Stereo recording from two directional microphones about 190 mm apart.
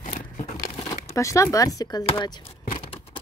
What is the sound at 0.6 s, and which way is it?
Crumpling, 15° left (ahead or behind).